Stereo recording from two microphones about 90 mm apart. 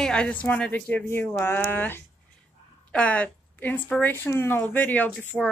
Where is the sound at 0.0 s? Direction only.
10° left (ahead or behind).